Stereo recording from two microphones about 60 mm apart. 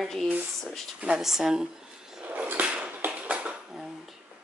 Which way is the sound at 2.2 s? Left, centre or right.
Right.